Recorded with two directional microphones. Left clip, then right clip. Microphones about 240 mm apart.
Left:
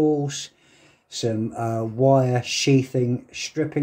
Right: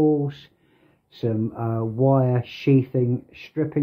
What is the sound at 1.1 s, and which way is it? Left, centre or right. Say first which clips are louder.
Speech: left 1 dB; centre.